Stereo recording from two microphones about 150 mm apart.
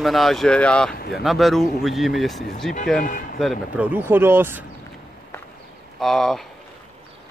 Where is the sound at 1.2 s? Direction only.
Centre (ahead or behind).